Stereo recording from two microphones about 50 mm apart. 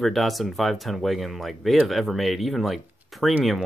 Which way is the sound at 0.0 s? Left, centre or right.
Centre.